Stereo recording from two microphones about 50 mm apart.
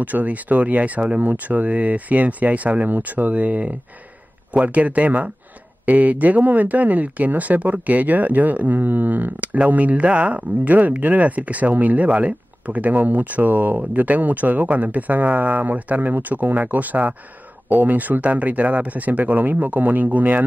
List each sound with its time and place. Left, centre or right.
0.0 s speech: right